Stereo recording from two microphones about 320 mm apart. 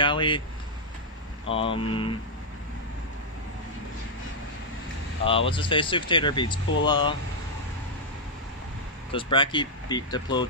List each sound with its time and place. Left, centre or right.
0.0 s speech: centre
1.5 s speech: centre
5.2 s speech: centre
9.1 s speech: centre